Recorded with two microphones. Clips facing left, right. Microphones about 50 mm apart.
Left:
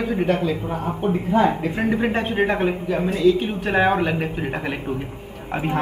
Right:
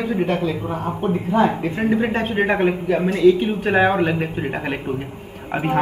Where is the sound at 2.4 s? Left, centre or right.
Right.